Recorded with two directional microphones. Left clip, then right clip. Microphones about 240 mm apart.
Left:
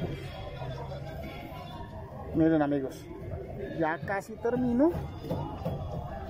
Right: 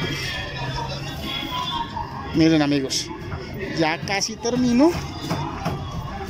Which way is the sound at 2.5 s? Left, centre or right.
Right.